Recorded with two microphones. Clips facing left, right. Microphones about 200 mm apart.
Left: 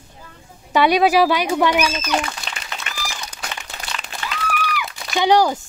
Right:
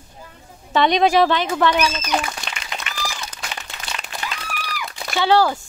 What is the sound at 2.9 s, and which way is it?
Applause, 40° left (ahead or behind).